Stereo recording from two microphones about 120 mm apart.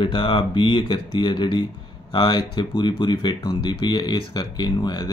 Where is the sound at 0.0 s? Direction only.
45° left (ahead or behind).